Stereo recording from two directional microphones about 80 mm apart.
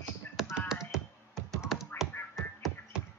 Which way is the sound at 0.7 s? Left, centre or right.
Centre.